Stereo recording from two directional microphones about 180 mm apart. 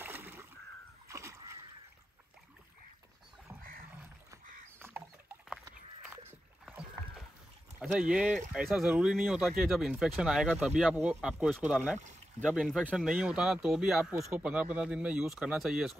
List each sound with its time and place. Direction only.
0.0 s splash: 10° right (ahead or behind)
4.7 s rodents: 10° right (ahead or behind)
7.9 s speech: 5° right (ahead or behind)
12.0 s pour: 40° right (ahead or behind)
12.4 s speech: centre (ahead or behind)